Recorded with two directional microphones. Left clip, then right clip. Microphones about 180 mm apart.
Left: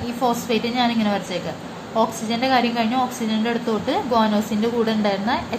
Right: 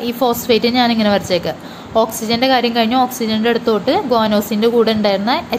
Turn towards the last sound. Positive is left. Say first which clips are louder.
# right 6 dB
turn(degrees=-45)  # may be behind; listen again after turning